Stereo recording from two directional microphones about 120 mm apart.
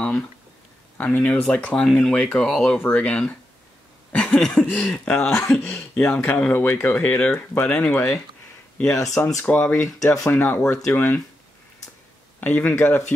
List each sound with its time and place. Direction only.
0.9 s speech: 10° left (ahead or behind)
9.1 s speech: 25° left (ahead or behind)
9.4 s speech: 15° left (ahead or behind)
9.8 s speech: 25° left (ahead or behind)
12.4 s speech: 15° left (ahead or behind)